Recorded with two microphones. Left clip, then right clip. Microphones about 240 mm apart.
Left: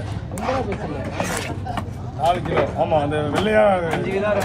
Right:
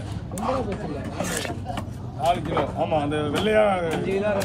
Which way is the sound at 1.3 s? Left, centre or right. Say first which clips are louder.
Left 3 dB; left.